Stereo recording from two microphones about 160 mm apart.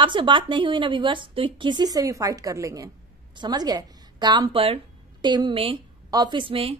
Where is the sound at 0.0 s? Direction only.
30° right (ahead or behind).